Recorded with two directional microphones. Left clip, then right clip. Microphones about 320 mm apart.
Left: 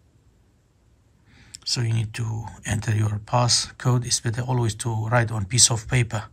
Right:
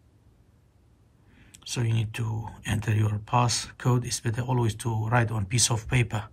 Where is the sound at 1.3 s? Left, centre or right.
Centre.